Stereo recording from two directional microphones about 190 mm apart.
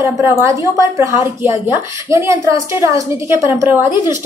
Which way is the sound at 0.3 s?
15° right (ahead or behind).